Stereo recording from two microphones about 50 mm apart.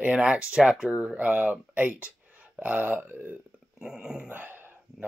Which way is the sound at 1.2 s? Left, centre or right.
Right.